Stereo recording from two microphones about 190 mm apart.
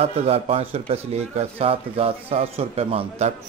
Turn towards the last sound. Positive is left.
turn(degrees=-30)  # may be behind; listen again after turning